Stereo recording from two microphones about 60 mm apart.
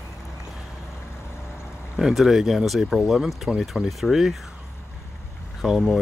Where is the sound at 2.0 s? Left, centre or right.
Centre.